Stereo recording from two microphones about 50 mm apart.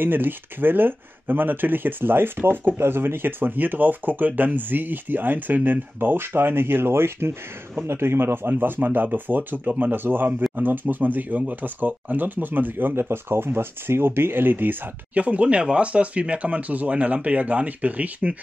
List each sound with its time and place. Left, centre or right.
0.0 s speech: right
15.1 s speech: right